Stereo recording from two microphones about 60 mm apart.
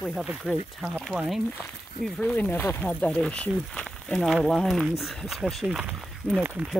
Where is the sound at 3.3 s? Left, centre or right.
Centre.